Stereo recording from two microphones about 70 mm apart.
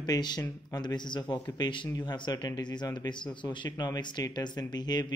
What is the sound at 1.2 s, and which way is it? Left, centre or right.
Speech, left.